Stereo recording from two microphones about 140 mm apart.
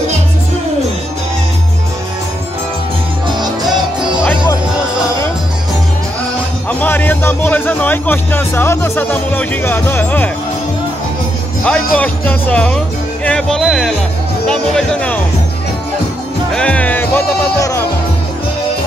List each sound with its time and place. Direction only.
3.3 s music: 30° right (ahead or behind)
6.7 s music: 15° left (ahead or behind)
11.6 s music: 5° left (ahead or behind)
16.5 s music: 10° left (ahead or behind)